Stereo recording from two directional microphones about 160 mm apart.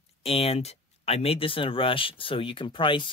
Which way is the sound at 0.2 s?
35° left (ahead or behind).